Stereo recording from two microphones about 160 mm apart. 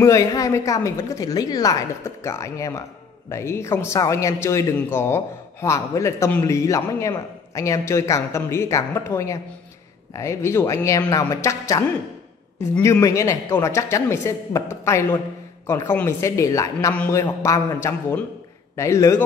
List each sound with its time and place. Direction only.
0.0 s a woman's voice: 20° left (ahead or behind)